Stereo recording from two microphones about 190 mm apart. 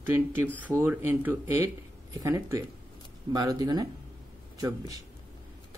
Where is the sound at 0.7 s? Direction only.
10° right (ahead or behind).